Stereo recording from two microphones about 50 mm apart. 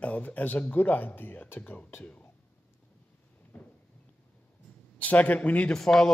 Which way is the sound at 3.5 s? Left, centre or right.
Left.